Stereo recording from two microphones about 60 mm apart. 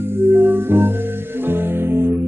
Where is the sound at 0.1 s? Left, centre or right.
Right.